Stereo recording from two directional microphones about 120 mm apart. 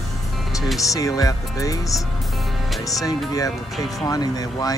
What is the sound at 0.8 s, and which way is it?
Speech, 30° left (ahead or behind).